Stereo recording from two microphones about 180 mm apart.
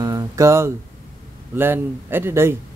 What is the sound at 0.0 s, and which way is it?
Music, 15° right (ahead or behind).